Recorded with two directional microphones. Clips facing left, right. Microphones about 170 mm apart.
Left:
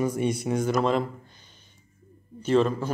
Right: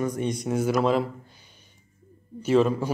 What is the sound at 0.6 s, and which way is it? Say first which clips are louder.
A man's voice: right 3 dB; 5° right (ahead or behind).